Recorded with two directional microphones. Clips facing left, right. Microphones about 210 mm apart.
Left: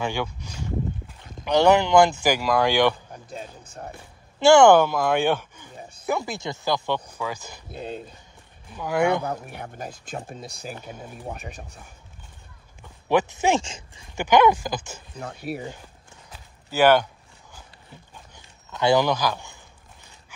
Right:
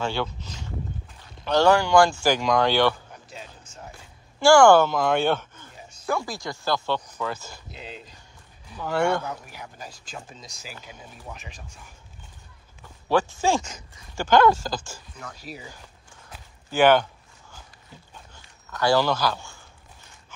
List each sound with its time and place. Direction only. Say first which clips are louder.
0.0 s speech: even; 15° left (ahead or behind)
3.3 s a sound: left 7 dB; 55° left (ahead or behind)
4.4 s speech: left 1 dB; 20° left (ahead or behind)
5.8 s bow-wow: left 7 dB; 55° left (ahead or behind)
6.0 s speech: left 1 dB; 20° left (ahead or behind)
7.7 s speech: left 9 dB; 55° left (ahead or behind)
8.7 s speech: left 2 dB; 10° left (ahead or behind)
9.2 s speech: left 5 dB; 55° left (ahead or behind)
13.1 s speech: left 1 dB; 20° left (ahead or behind)
14.2 s speech: left 1 dB; 15° left (ahead or behind)
15.3 s speech: left 12 dB; 60° left (ahead or behind)
16.7 s zipper: even; 10° left (ahead or behind)
18.1 s a sound: left 1 dB; 20° left (ahead or behind)